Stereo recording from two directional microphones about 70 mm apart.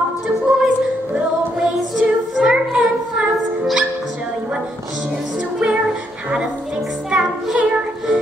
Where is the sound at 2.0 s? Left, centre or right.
Centre.